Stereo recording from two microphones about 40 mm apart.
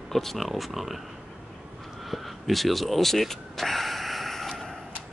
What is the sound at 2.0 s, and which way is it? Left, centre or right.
Vehicle, centre.